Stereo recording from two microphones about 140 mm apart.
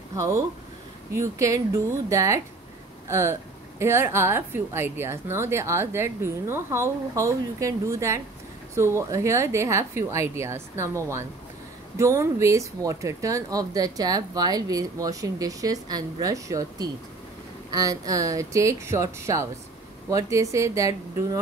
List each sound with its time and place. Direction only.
0.1 s speech: 20° right (ahead or behind)